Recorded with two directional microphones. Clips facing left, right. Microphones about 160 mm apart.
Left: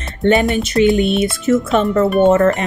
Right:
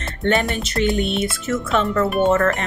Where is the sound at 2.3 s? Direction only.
20° left (ahead or behind).